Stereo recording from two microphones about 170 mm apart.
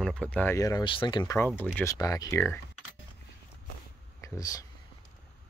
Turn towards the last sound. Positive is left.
turn(degrees=20)  # may be behind; listen again after turning